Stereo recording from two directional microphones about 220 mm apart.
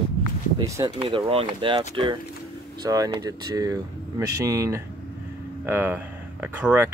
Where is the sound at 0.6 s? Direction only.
15° right (ahead or behind).